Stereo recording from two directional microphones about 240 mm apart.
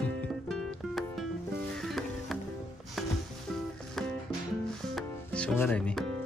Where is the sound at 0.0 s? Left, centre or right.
Centre.